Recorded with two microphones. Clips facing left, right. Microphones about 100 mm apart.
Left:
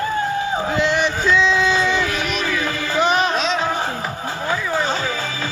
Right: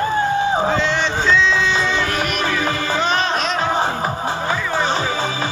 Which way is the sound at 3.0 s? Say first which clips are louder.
Left 4 dB; 10° left (ahead or behind).